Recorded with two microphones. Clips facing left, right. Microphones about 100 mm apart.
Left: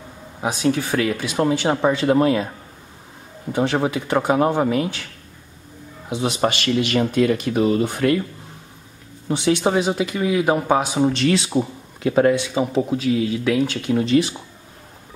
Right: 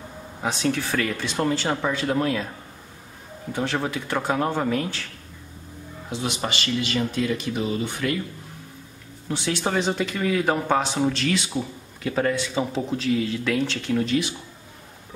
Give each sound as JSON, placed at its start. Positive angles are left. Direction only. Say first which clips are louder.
{"t": 0.4, "sound": "speech", "louder": "left 4 dB", "side_deg": 10}
{"t": 3.5, "sound": "speech", "louder": "left 6 dB", "side_deg": 15}
{"t": 6.4, "sound": "speech", "louder": "left 9 dB", "side_deg": 55}
{"t": 7.3, "sound": "speech", "louder": "left 8 dB", "side_deg": 50}
{"t": 9.5, "sound": "speech", "louder": "left 6 dB", "side_deg": 15}
{"t": 11.2, "sound": "speech", "louder": "left 6 dB", "side_deg": 30}
{"t": 12.1, "sound": "speech", "louder": "left 7 dB", "side_deg": 20}